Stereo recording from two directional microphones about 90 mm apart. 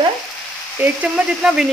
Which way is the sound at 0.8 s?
10° right (ahead or behind).